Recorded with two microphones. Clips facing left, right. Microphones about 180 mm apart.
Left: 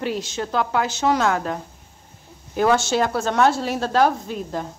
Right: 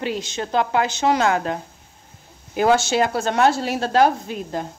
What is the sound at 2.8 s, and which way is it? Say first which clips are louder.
Speech: right 1 dB; centre (ahead or behind).